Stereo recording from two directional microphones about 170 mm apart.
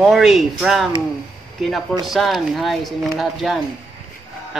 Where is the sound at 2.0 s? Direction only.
Centre (ahead or behind).